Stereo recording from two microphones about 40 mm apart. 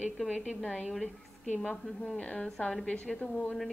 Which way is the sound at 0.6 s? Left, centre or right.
Left.